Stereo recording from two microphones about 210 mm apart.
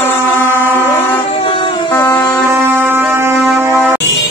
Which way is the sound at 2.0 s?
20° left (ahead or behind).